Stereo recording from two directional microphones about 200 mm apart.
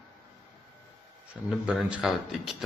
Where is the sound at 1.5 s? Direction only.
5° right (ahead or behind).